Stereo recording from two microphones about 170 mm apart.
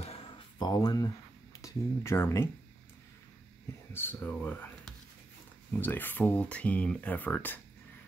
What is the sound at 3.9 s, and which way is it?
Speech, 10° left (ahead or behind).